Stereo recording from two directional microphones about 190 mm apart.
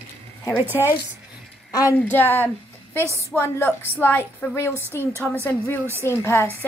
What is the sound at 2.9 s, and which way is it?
Speech, 15° right (ahead or behind).